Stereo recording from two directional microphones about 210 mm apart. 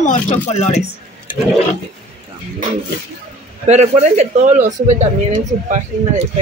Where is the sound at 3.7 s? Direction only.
30° right (ahead or behind).